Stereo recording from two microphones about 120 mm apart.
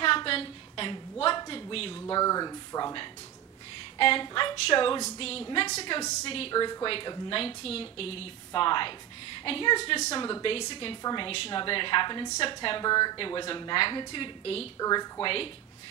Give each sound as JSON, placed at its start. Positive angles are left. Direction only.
{"t": 0.0, "sound": "a sound", "side_deg": 50}
{"t": 2.0, "sound": "speech", "side_deg": 30}
{"t": 6.5, "sound": "speech", "side_deg": 35}
{"t": 10.1, "sound": "speech", "side_deg": 35}
{"t": 10.4, "sound": "speech", "side_deg": 50}
{"t": 11.0, "sound": "speech", "side_deg": 35}
{"t": 11.2, "sound": "speech", "side_deg": 50}
{"t": 14.8, "sound": "speech", "side_deg": 35}